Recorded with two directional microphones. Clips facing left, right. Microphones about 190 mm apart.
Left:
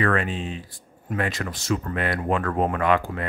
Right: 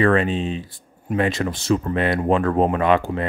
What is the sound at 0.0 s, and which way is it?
Speech, 25° right (ahead or behind).